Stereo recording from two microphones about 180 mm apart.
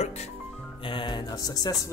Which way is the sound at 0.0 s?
35° left (ahead or behind).